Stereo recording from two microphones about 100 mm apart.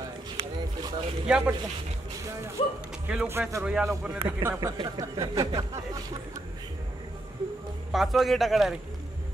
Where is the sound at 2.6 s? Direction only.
60° left (ahead or behind).